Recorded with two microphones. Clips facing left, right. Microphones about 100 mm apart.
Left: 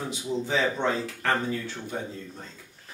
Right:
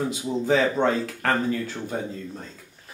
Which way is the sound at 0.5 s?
45° right (ahead or behind).